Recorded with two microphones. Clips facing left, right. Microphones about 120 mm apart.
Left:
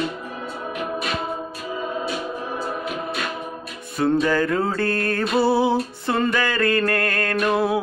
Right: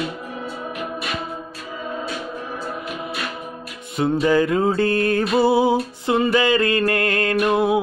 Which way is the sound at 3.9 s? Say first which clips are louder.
Right 2 dB; 15° right (ahead or behind).